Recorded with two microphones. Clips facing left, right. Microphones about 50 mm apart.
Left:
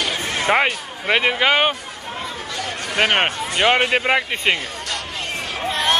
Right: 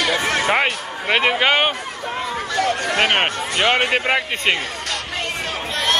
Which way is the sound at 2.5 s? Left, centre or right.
Right.